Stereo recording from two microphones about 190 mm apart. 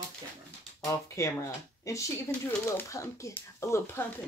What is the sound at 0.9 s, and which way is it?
Speech, 15° left (ahead or behind).